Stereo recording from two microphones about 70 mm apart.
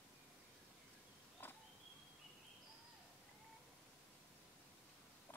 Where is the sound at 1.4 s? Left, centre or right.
Left.